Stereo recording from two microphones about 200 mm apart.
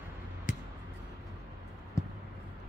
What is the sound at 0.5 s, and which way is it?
Music, 40° left (ahead or behind).